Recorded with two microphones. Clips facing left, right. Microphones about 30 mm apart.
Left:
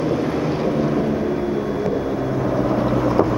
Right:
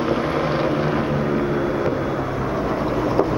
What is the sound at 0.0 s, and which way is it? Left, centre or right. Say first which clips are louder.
Vehicle: even; right.